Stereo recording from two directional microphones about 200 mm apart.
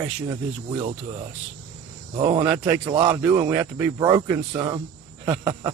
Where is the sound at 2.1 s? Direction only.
30° right (ahead or behind).